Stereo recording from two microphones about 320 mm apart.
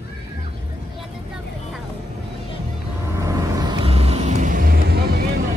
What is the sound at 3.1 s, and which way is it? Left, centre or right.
Vehicle, centre.